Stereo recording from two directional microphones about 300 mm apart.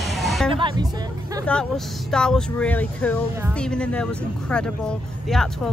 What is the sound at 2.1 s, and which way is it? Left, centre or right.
Speech, centre.